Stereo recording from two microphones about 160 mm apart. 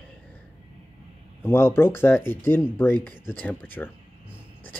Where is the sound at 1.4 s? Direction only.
15° left (ahead or behind).